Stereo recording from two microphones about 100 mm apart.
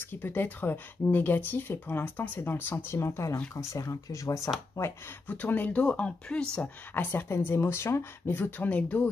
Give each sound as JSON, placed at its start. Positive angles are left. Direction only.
{"t": 0.1, "sound": "speech", "side_deg": 20}
{"t": 5.3, "sound": "speech", "side_deg": 15}